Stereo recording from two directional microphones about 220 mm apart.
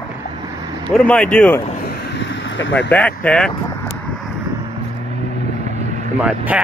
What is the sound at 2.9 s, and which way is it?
Speech, 5° left (ahead or behind).